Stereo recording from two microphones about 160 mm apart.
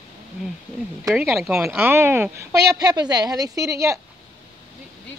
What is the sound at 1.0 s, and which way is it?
Speech, centre (ahead or behind).